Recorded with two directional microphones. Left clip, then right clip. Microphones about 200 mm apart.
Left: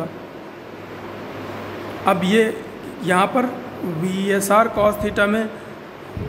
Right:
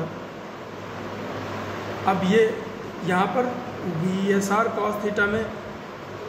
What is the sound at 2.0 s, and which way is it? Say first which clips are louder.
Speech: left 3 dB; 55° left (ahead or behind).